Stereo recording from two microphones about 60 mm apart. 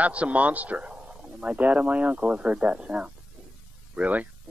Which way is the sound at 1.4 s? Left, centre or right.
Right.